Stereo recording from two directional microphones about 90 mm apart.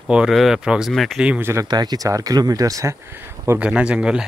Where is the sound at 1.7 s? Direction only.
50° right (ahead or behind).